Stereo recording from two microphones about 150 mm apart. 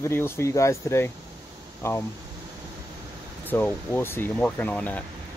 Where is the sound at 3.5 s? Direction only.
10° left (ahead or behind).